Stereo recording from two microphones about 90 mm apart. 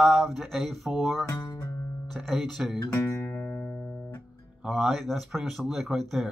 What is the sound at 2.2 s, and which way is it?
Speech, centre (ahead or behind).